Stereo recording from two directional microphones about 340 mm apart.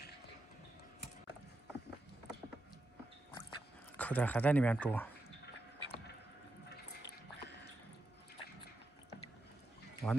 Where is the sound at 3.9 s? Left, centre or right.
Centre.